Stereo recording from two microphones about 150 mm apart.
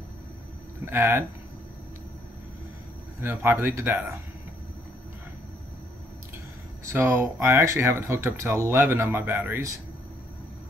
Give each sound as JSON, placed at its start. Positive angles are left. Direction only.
{"t": 0.8, "sound": "speech", "side_deg": -15}
{"t": 3.2, "sound": "speech", "side_deg": -15}
{"t": 6.9, "sound": "speech", "side_deg": -15}